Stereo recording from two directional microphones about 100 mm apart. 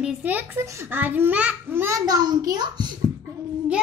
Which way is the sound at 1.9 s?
40° right (ahead or behind).